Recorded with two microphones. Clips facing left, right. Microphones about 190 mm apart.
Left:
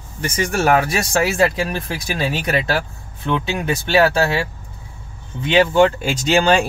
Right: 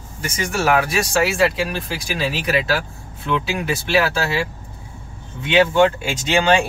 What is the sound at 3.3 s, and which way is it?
Speech, 30° left (ahead or behind).